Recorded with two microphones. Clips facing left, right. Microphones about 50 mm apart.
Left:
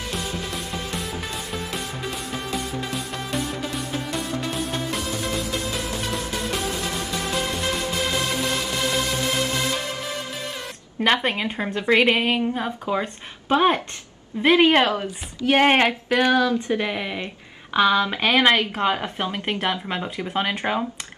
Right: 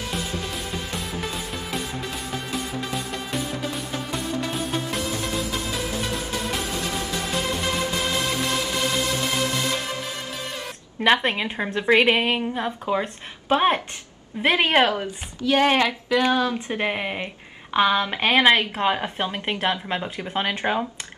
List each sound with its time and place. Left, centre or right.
2.5 s music: centre
11.0 s a woman's voice: centre
15.4 s child singing: left
16.3 s a woman's voice: right
18.1 s a woman's voice: centre